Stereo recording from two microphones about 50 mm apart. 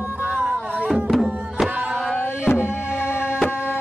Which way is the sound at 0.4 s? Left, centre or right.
Right.